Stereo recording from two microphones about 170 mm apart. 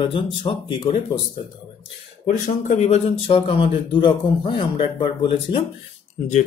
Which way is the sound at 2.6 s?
45° left (ahead or behind).